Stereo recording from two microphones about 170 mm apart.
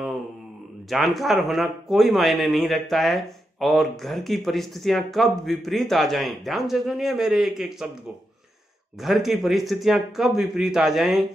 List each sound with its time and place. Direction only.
0.8 s speech: centre (ahead or behind)
9.0 s speech: centre (ahead or behind)